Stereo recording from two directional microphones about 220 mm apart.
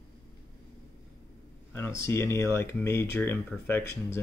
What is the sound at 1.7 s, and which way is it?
Speech, 10° left (ahead or behind).